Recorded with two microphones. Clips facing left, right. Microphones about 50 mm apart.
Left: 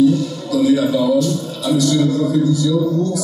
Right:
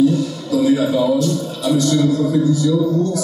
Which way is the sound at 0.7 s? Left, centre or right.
Centre.